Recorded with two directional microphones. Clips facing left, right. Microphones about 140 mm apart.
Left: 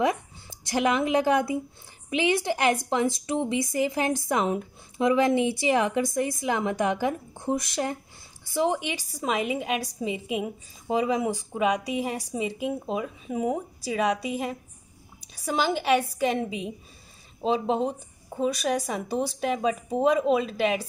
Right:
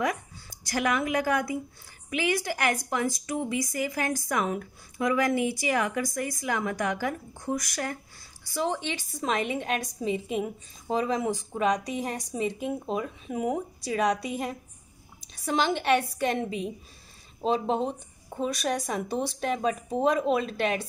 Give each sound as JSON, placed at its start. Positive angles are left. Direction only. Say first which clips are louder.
{"t": 0.0, "sound": "a woman's voice", "louder": "left 4 dB", "side_deg": 25}